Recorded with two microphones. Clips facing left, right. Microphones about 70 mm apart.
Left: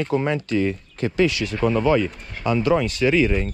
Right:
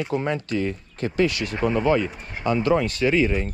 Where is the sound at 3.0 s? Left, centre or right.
Left.